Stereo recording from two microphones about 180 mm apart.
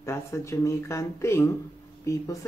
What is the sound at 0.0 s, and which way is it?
Speech, 15° left (ahead or behind).